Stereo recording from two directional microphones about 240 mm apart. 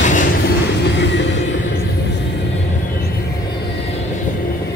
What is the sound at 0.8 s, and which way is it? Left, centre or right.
Music, left.